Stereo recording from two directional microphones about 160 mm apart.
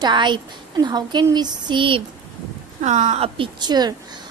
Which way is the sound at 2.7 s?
50° right (ahead or behind).